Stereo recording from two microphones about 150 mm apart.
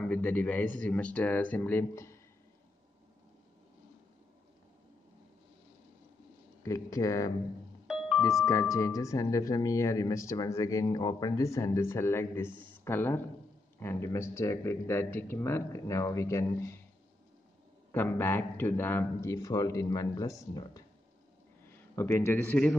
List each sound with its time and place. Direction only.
0.0 s speech: 10° left (ahead or behind)
6.6 s speech: 20° left (ahead or behind)
7.8 s music: 5° right (ahead or behind)
8.5 s speech: 20° left (ahead or behind)
17.9 s speech: 15° left (ahead or behind)
21.9 s speech: 15° left (ahead or behind)